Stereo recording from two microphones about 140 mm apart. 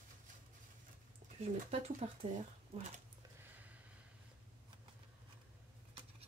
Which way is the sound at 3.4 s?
10° right (ahead or behind).